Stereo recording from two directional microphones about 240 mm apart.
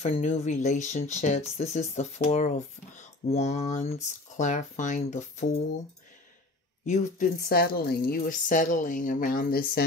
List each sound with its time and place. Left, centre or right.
0.0 s speech: left
6.9 s a woman's voice: left